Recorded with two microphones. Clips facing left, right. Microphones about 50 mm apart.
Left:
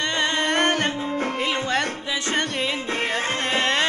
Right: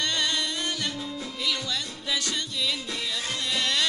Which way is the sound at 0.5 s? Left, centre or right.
Left.